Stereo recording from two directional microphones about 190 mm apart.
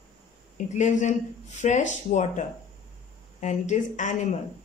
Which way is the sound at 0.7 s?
40° left (ahead or behind).